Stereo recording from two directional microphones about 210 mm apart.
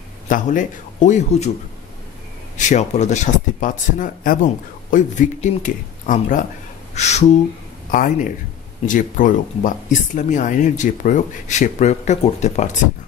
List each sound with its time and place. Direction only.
0.3 s speech: 35° left (ahead or behind)
2.5 s speech: 35° left (ahead or behind)